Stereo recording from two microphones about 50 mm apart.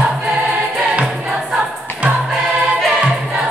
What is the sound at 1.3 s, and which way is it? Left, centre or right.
Choir, centre.